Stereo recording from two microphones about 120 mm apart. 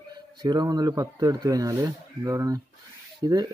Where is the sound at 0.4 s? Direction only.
35° right (ahead or behind).